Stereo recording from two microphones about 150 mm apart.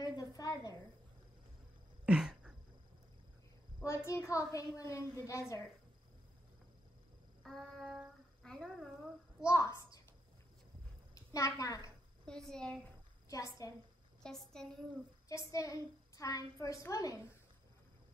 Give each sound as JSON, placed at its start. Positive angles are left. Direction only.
{"t": 0.0, "sound": "a sound", "side_deg": 25}
{"t": 2.0, "sound": "a sound", "side_deg": -5}
{"t": 3.8, "sound": "a woman's voice", "side_deg": 20}
{"t": 7.4, "sound": "speech", "side_deg": 5}
{"t": 9.4, "sound": "a woman's voice", "side_deg": 20}
{"t": 9.8, "sound": "a sound", "side_deg": 20}
{"t": 11.1, "sound": "a woman's voice", "side_deg": 20}
{"t": 12.3, "sound": "a woman's voice", "side_deg": 5}
{"t": 13.6, "sound": "a woman's voice", "side_deg": 20}
{"t": 14.2, "sound": "a woman's voice", "side_deg": 5}
{"t": 15.2, "sound": "a woman's voice", "side_deg": 20}